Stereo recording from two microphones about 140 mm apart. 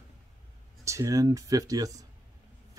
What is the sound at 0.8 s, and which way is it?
Speech, 20° right (ahead or behind).